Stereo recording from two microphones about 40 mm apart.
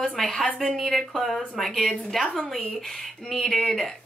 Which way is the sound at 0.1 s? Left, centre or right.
Left.